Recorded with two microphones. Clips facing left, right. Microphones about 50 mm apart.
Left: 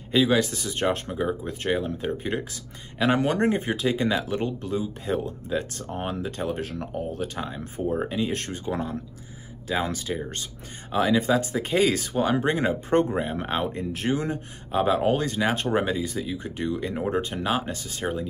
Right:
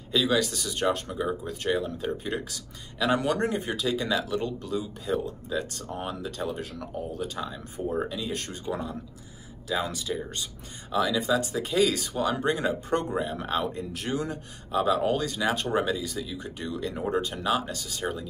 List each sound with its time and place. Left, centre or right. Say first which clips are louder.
0.1 s speech: left 3 dB; left